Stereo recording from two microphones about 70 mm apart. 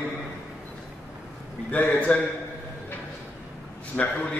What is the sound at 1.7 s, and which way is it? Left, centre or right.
Speech, left.